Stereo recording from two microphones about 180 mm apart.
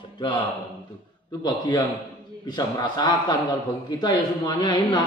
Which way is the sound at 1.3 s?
25° left (ahead or behind).